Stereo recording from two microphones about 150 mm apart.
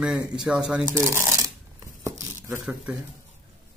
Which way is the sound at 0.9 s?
15° right (ahead or behind).